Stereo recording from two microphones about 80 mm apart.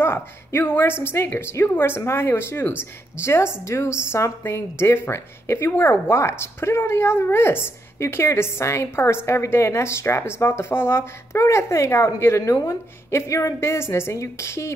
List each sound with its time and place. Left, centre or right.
0.0 s a woman's voice: left